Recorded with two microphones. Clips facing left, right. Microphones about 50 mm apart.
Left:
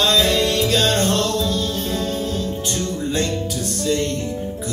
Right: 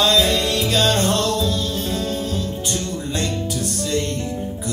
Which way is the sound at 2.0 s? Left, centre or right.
Centre.